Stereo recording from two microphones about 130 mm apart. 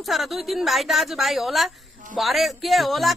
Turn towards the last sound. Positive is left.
turn(degrees=0)  # may be behind; listen again after turning